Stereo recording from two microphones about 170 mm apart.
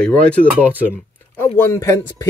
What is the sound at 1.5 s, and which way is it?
Speech, 15° left (ahead or behind).